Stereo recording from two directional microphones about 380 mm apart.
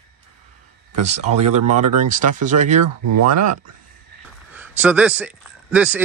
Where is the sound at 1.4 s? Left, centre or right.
Right.